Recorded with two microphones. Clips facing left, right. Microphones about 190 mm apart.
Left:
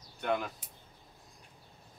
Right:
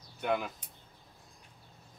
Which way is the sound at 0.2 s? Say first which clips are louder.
Right 1 dB; 5° right (ahead or behind).